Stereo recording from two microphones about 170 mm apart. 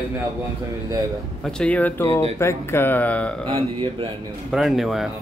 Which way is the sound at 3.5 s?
30° right (ahead or behind).